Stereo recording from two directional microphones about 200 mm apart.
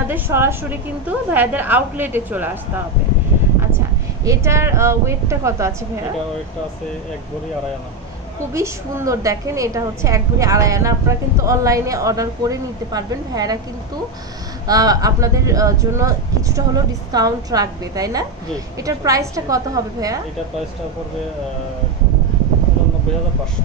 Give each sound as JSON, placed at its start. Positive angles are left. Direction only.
{"t": 0.1, "sound": "a woman's voice", "side_deg": -10}
{"t": 4.2, "sound": "a woman's voice", "side_deg": -15}
{"t": 8.5, "sound": "a woman's voice", "side_deg": -15}
{"t": 14.7, "sound": "a woman's voice", "side_deg": -20}